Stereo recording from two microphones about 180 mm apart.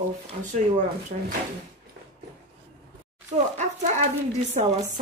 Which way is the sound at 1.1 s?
55° right (ahead or behind).